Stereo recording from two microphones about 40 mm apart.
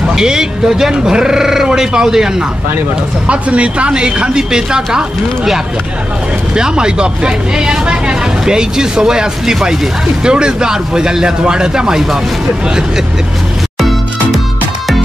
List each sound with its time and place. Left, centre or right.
0.1 s speech: centre
3.3 s speech: right; by 12.2 s centre
13.7 s music: centre